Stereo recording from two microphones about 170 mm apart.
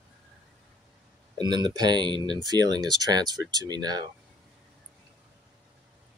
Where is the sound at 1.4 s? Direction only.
25° right (ahead or behind).